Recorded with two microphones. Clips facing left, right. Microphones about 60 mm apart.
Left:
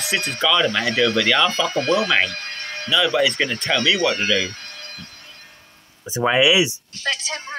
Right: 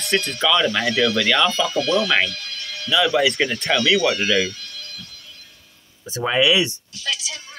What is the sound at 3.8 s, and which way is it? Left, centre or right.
Speech, left.